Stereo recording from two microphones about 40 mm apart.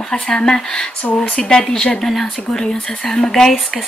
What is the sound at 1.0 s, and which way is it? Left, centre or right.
Speech, left.